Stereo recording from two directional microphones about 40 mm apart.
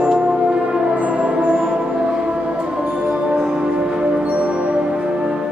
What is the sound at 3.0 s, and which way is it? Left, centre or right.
Music, right.